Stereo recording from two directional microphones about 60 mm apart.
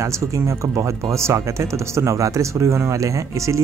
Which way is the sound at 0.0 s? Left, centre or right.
Right.